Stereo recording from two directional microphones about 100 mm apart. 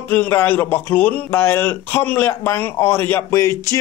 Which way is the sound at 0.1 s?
20° left (ahead or behind).